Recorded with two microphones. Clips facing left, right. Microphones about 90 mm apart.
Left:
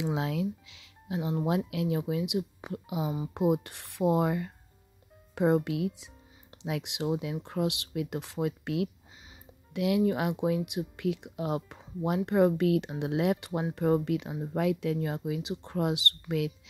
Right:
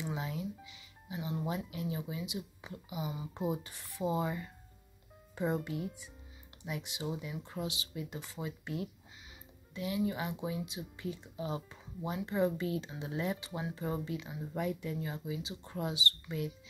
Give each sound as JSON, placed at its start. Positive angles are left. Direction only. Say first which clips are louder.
{"t": 0.0, "sound": "speech", "louder": "left 8 dB", "side_deg": 90}
{"t": 3.3, "sound": "speech", "louder": "left 10 dB", "side_deg": 70}
{"t": 9.8, "sound": "speech", "louder": "left 8 dB", "side_deg": 70}
{"t": 13.7, "sound": "speech", "louder": "left 13 dB", "side_deg": 60}
{"t": 14.5, "sound": "speech", "louder": "left 8 dB", "side_deg": 85}